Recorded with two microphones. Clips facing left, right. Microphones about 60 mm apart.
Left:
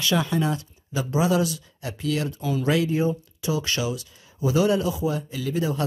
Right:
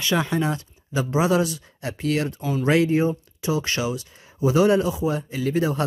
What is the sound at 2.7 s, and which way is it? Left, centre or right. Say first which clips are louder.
Speech: right 4 dB; right.